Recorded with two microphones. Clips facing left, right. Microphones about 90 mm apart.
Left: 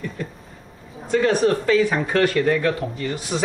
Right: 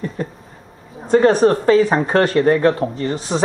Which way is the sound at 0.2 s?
40° right (ahead or behind).